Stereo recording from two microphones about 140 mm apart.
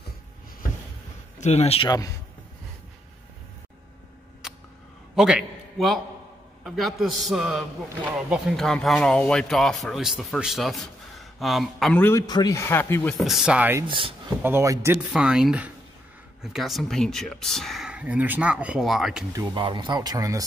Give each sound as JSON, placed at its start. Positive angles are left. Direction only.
{"t": 1.4, "sound": "speech", "side_deg": 50}
{"t": 1.9, "sound": "speech", "side_deg": 25}
{"t": 4.4, "sound": "a sound", "side_deg": -5}
{"t": 5.1, "sound": "a man's voice", "side_deg": -5}
{"t": 12.0, "sound": "a man's voice", "side_deg": 20}
{"t": 13.2, "sound": "speech", "side_deg": -5}
{"t": 13.8, "sound": "speech", "side_deg": -40}
{"t": 14.4, "sound": "a man's voice", "side_deg": -20}
{"t": 15.1, "sound": "speech", "side_deg": -5}
{"t": 19.3, "sound": "speech", "side_deg": -35}